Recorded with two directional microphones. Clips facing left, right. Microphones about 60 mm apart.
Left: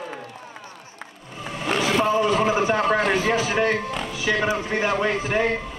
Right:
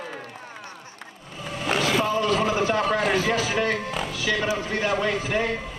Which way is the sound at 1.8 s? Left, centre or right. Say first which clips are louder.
Left 2 dB; centre.